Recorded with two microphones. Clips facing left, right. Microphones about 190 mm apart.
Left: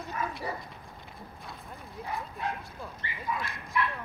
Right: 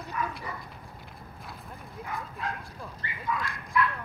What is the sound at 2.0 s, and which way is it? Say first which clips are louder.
Bow-wow: left 1 dB; 30° left (ahead or behind).